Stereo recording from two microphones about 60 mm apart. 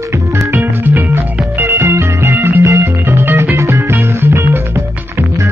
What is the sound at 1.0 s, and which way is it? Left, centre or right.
Music, right.